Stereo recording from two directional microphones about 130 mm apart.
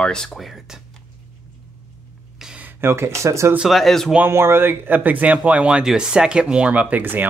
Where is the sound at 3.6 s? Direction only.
Centre (ahead or behind).